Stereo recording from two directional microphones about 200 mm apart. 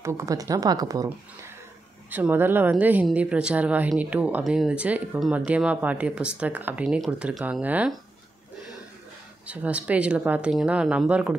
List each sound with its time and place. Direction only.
0.0 s speech: 15° right (ahead or behind)
9.5 s speech: 5° right (ahead or behind)